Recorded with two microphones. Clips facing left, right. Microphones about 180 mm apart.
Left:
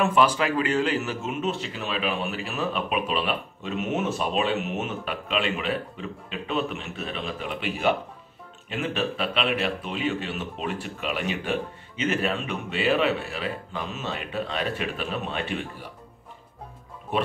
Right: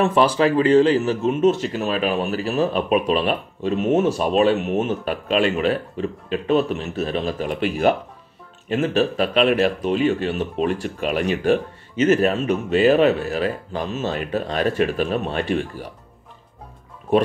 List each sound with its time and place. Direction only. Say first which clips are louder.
0.0 s speech: right 5 dB; 35° right (ahead or behind)